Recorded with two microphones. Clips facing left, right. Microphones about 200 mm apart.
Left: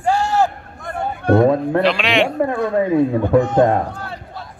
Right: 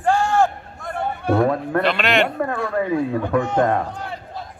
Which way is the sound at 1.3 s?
20° left (ahead or behind).